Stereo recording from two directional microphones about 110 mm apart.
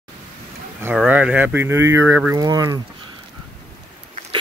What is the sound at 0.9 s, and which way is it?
Speech, 10° right (ahead or behind).